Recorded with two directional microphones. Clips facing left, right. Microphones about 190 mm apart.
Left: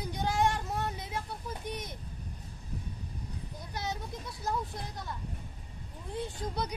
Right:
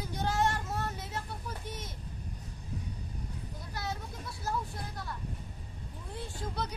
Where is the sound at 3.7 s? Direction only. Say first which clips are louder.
Left 2 dB; 20° left (ahead or behind).